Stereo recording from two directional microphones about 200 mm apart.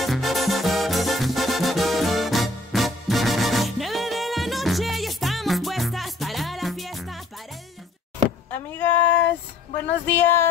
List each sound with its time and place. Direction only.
0.0 s music: centre (ahead or behind)
8.7 s a sound: 10° left (ahead or behind)
10.0 s speech: 10° left (ahead or behind)